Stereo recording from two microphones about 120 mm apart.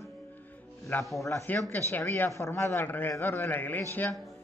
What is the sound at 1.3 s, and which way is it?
A man's voice, 20° left (ahead or behind).